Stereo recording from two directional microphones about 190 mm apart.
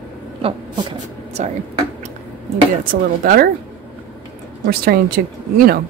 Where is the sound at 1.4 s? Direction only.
40° right (ahead or behind).